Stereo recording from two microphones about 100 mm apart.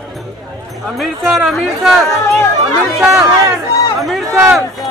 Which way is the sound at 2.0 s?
30° left (ahead or behind).